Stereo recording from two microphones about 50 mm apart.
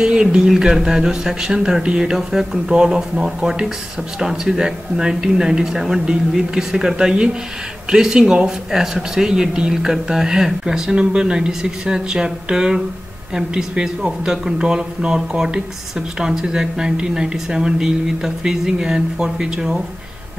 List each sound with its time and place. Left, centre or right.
0.0 s speech: centre